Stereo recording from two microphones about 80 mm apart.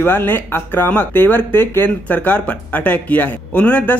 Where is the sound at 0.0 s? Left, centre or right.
Left.